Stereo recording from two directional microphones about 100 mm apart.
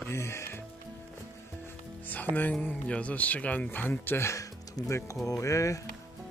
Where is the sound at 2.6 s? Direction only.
10° left (ahead or behind); by 5.9 s 30° left (ahead or behind).